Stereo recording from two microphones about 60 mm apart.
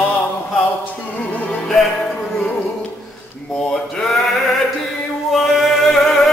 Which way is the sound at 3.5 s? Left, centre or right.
Centre.